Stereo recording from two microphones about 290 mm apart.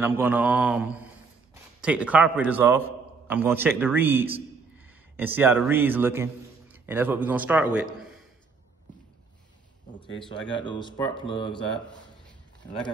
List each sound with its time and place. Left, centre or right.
0.0 s a man's voice: centre
10.6 s speech: centre